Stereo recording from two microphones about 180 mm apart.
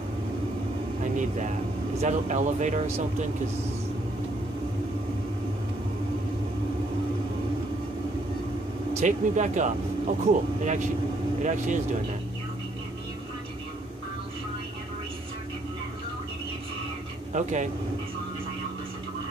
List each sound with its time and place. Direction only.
2.0 s speech: 40° right (ahead or behind)
8.9 s speech: 40° right (ahead or behind)
17.3 s speech: 40° right (ahead or behind)